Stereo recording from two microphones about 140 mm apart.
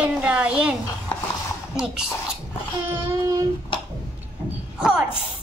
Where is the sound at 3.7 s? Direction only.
35° left (ahead or behind).